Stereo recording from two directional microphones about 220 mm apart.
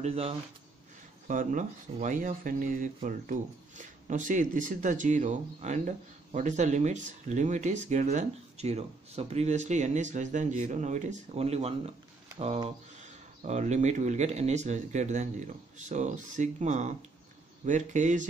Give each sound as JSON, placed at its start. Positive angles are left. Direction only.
{"t": 0.0, "sound": "speech", "side_deg": -25}